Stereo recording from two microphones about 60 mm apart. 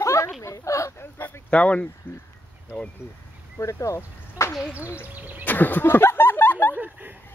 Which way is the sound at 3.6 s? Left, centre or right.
Left.